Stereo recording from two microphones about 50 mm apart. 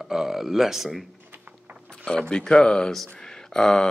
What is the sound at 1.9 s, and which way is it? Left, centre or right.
Mechanisms, centre.